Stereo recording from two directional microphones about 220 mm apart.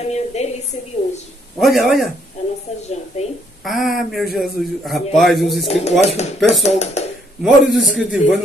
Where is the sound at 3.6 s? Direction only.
Centre (ahead or behind).